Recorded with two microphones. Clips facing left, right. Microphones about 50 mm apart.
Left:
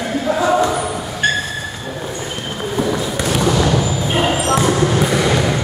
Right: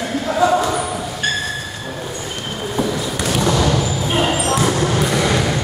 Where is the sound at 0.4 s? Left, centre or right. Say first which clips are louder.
Right 1 dB; centre.